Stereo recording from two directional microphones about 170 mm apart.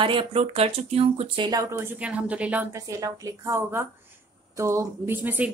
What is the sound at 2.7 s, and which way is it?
A woman's voice, 20° right (ahead or behind).